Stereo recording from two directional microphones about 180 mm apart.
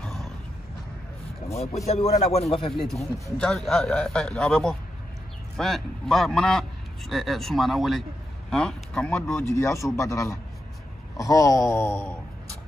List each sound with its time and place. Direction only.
0.0 s creak: centre (ahead or behind)
1.9 s a man's voice: 35° left (ahead or behind)
2.7 s a man's voice: centre (ahead or behind)
9.3 s a man's voice: 15° left (ahead or behind)